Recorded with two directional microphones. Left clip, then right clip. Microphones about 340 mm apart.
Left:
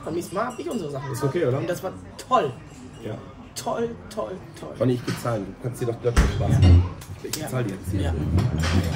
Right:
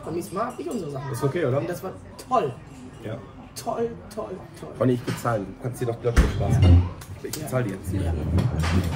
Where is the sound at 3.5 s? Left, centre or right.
Centre.